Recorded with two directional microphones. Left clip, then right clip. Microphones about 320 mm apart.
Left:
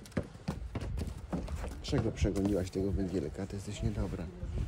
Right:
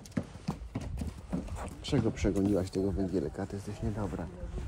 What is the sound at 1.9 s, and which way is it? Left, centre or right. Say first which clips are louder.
Speech: right 3 dB; centre.